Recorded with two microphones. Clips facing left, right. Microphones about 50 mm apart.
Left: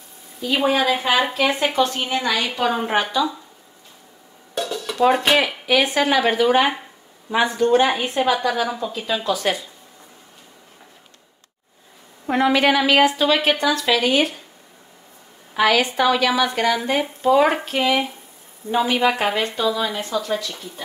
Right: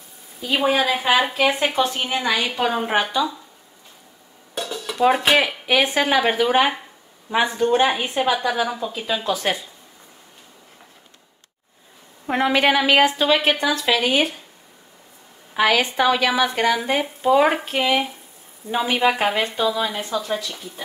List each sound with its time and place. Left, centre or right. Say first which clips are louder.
0.4 s speech: even; centre
1.8 s speech: left 1 dB; centre
4.6 s dishes: left 2 dB; centre
5.7 s a woman's voice: left 1 dB; right
7.2 s speech: left 1 dB; centre
9.2 s a woman's voice: left 2 dB; right
12.5 s a woman's voice: right 1 dB; right
13.4 s speech: left 1 dB; centre
15.5 s a woman's voice: left 1 dB; centre
16.7 s speech: even; centre